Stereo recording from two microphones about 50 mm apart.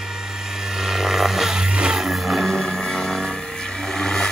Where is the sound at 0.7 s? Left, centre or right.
Centre.